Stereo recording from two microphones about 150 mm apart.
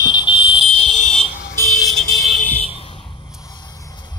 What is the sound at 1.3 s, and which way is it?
Vehicle, 75° left (ahead or behind).